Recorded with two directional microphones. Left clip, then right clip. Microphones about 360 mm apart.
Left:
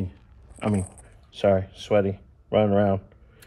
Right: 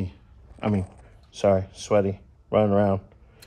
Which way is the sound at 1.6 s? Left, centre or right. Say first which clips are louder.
Even; centre.